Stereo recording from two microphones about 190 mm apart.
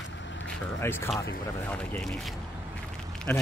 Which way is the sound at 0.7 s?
10° left (ahead or behind).